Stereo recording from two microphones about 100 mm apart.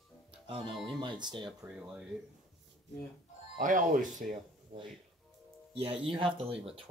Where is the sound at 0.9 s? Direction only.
50° right (ahead or behind).